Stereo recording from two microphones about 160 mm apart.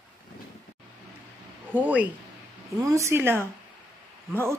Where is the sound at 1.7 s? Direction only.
10° right (ahead or behind).